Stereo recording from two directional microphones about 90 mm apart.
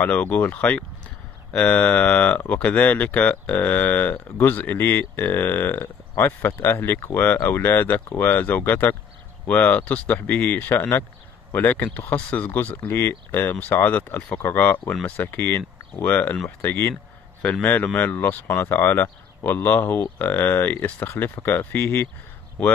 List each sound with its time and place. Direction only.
0.0 s speech: 15° left (ahead or behind)
17.4 s a man's voice: 15° left (ahead or behind)